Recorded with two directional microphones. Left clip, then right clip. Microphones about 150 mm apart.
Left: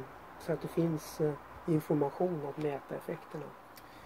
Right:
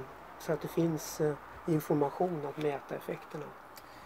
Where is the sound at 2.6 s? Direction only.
20° right (ahead or behind).